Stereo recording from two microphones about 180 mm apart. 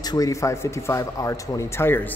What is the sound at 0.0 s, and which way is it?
Speech, 20° left (ahead or behind).